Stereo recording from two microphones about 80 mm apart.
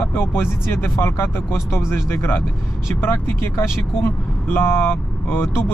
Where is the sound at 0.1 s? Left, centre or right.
Left.